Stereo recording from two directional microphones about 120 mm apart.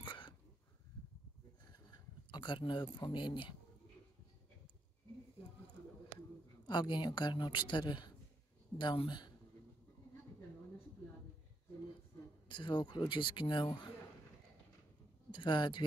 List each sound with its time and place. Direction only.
0.0 s a sound: 40° left (ahead or behind)
2.3 s a woman's voice: 40° left (ahead or behind)
6.6 s a woman's voice: 40° left (ahead or behind)
12.4 s a woman's voice: 40° left (ahead or behind)
15.3 s speech: 40° left (ahead or behind)